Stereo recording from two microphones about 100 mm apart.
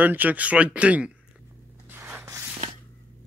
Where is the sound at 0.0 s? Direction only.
15° right (ahead or behind).